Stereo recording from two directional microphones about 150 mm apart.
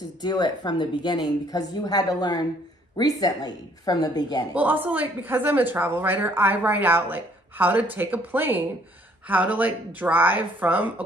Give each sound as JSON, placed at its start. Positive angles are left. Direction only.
{"t": 0.2, "sound": "speech", "side_deg": 30}
{"t": 4.6, "sound": "a woman's voice", "side_deg": -10}